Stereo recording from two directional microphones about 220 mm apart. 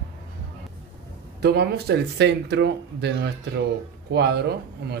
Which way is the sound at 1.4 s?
45° right (ahead or behind).